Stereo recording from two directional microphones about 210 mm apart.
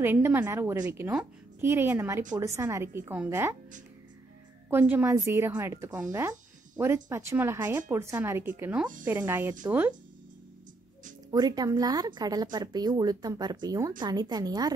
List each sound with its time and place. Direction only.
0.0 s a woman's voice: 10° right (ahead or behind)
4.6 s a woman's voice: 10° right (ahead or behind)
11.3 s a woman's voice: 20° right (ahead or behind)